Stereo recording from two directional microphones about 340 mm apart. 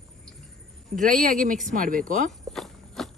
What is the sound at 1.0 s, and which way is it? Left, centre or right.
Speech, right.